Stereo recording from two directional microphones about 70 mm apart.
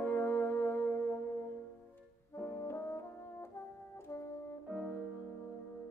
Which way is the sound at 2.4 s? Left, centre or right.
Left.